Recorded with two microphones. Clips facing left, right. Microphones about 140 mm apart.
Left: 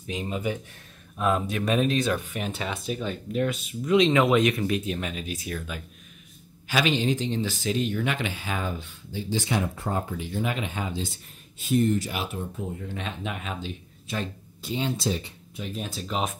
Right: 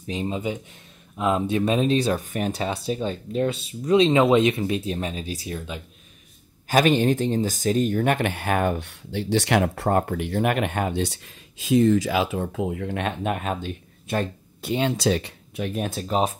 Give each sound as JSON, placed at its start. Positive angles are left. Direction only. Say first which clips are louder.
{"t": 0.0, "sound": "speech", "louder": "right 3 dB", "side_deg": -30}
{"t": 6.7, "sound": "speech", "louder": "right 6 dB", "side_deg": -50}
{"t": 16.1, "sound": "speech", "louder": "right 6 dB", "side_deg": -35}